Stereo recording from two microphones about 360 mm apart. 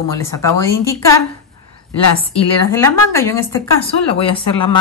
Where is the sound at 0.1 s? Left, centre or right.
Centre.